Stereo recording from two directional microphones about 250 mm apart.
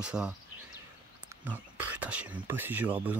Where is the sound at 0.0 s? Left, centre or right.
Centre.